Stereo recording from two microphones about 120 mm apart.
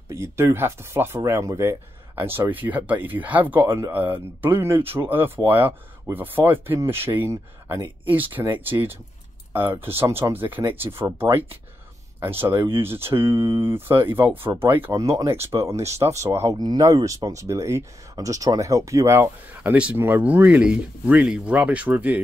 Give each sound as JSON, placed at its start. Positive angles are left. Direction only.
{"t": 0.1, "sound": "speech", "side_deg": -20}